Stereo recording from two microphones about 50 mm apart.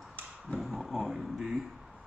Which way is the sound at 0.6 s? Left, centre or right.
Centre.